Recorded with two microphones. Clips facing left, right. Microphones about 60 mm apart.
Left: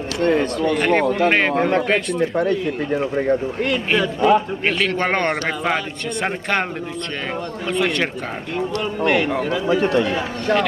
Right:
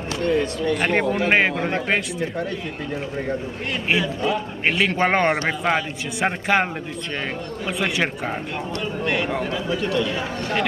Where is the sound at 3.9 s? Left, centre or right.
Left.